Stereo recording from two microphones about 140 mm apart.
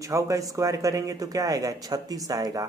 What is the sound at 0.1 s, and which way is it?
A man's voice, 25° right (ahead or behind).